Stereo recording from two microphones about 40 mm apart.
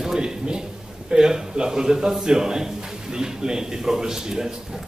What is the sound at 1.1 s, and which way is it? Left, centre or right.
Speech, centre.